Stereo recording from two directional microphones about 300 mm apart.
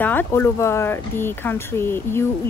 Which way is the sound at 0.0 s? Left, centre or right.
Centre.